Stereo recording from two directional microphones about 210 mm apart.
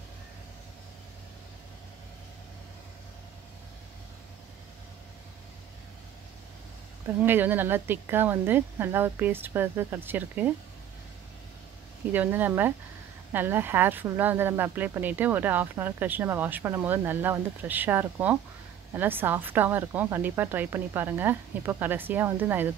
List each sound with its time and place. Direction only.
7.2 s speech: 10° right (ahead or behind)
12.1 s speech: 10° right (ahead or behind)